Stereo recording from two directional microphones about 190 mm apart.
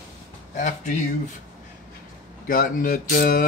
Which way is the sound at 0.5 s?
40° left (ahead or behind).